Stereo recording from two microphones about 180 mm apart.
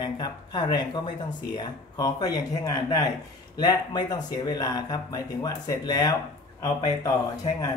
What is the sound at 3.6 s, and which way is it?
Speech, 20° left (ahead or behind).